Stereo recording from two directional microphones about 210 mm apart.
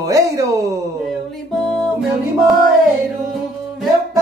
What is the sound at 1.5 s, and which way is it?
Music, centre (ahead or behind).